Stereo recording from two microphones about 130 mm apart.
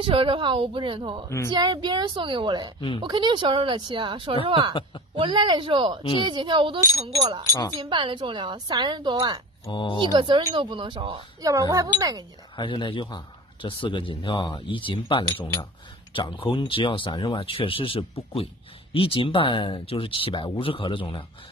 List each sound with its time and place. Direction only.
0.0 s a woman's voice: 45° right (ahead or behind)
9.7 s a man's voice: 40° left (ahead or behind)
9.9 s a woman's voice: 35° right (ahead or behind)
11.4 s a woman's voice: 25° right (ahead or behind)
12.5 s a man's voice: 40° left (ahead or behind)